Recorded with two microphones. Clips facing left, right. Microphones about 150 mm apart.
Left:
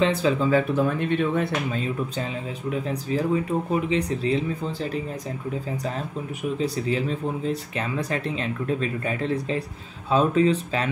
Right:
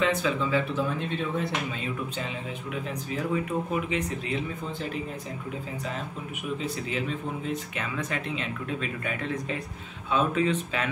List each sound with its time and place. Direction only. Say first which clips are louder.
0.0 s speech: left 5 dB; 30° left (ahead or behind); by 1.5 s 60° left (ahead or behind)
2.7 s speech: left 8 dB; 35° left (ahead or behind)
6.6 s speech: left 8 dB; 35° left (ahead or behind)